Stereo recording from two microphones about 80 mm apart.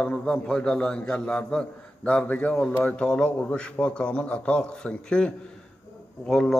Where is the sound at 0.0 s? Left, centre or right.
Centre.